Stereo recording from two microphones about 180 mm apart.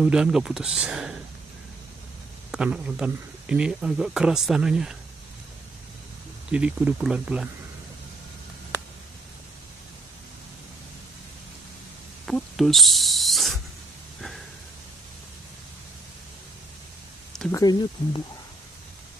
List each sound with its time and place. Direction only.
0.0 s speech: 5° right (ahead or behind)
2.5 s speech: 5° right (ahead or behind)
6.5 s speech: 5° right (ahead or behind)
12.3 s owl: centre (ahead or behind)
17.5 s speech: 20° left (ahead or behind)